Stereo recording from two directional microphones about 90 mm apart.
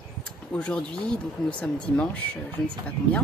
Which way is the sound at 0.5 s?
10° left (ahead or behind).